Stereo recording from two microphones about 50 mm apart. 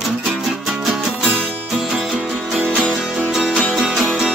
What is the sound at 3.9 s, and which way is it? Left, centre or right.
Music, centre.